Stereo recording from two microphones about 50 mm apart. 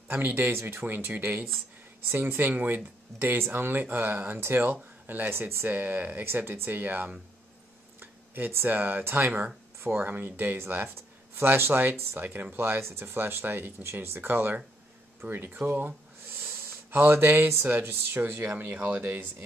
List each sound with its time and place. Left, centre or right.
0.1 s speech: right
5.3 s speech: right
6.2 s speech: right
8.0 s a sound: right
8.6 s speech: right
16.3 s a sound: right
17.4 s speech: right
18.6 s speech: right
19.0 s speech: right